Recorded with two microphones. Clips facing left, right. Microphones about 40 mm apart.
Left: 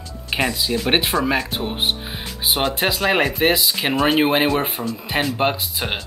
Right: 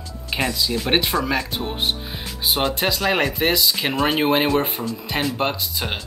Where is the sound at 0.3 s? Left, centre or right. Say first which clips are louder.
Left 2 dB; centre.